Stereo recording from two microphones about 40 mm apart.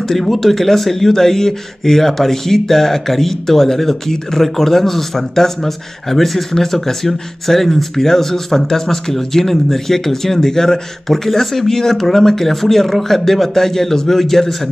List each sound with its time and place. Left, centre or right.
0.1 s speech: centre